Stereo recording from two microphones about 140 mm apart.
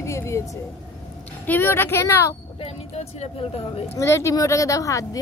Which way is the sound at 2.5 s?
45° left (ahead or behind).